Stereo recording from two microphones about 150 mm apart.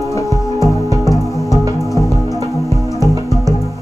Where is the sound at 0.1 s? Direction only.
20° left (ahead or behind).